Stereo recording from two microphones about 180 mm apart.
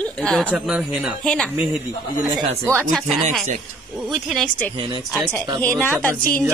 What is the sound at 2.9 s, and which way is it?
A woman's voice, centre (ahead or behind).